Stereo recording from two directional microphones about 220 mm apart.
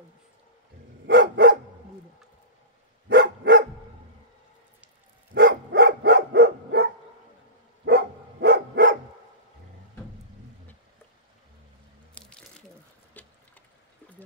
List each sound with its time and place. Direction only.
1.0 s dog: 50° right (ahead or behind)
3.1 s dog: 50° right (ahead or behind)
5.3 s dog: 50° right (ahead or behind)
12.1 s a sound: 5° left (ahead or behind)